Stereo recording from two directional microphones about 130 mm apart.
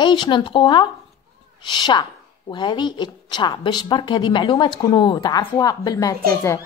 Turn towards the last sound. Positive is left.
turn(degrees=25)  # may be behind; listen again after turning